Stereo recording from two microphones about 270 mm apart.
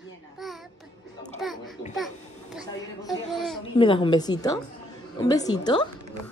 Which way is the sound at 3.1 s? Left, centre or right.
Centre.